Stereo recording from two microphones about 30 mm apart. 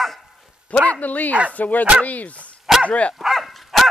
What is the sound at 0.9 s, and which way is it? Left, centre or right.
Speech, left.